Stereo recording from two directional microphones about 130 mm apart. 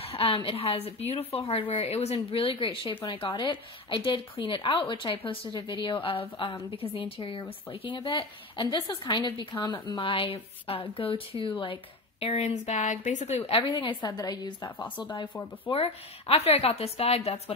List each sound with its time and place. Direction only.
0.0 s a woman's voice: 50° left (ahead or behind); by 13.3 s 70° left (ahead or behind)
13.4 s a woman's voice: 45° left (ahead or behind)
15.7 s a woman's voice: 50° left (ahead or behind)